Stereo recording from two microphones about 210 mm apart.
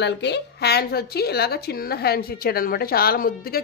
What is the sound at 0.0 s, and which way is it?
Speech, 55° left (ahead or behind).